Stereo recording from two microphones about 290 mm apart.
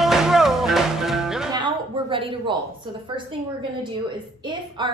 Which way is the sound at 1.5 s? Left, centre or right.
Centre.